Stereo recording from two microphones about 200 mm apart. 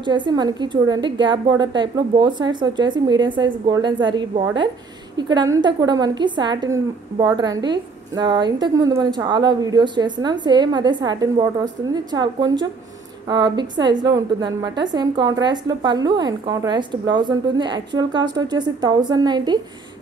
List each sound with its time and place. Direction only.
0.0 s a woman's voice: 25° right (ahead or behind)